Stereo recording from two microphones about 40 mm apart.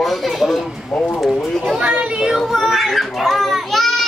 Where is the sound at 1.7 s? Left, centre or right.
Right.